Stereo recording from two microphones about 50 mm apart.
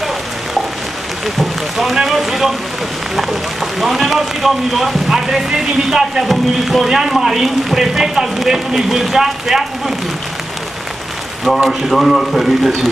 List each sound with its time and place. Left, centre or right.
1.2 s a sound: centre
2.0 s speech: centre
3.8 s speech: centre
11.6 s speech: centre